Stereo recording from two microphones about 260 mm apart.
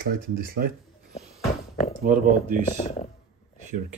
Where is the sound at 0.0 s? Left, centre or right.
Right.